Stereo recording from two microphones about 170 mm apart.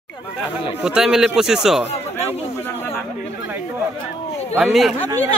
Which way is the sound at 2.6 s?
10° left (ahead or behind).